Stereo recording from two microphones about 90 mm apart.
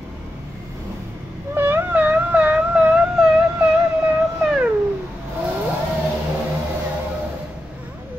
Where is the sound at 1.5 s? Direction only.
25° right (ahead or behind); by 3.3 s 10° right (ahead or behind).